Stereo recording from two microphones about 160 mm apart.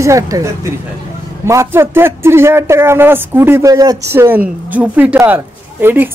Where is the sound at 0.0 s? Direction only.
20° right (ahead or behind).